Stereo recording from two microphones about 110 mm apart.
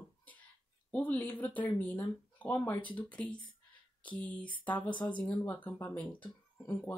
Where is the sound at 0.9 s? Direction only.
15° left (ahead or behind).